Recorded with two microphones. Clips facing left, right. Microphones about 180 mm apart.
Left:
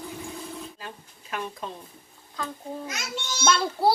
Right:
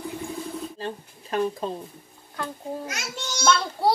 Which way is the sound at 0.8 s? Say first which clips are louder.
Right 9 dB; 35° right (ahead or behind).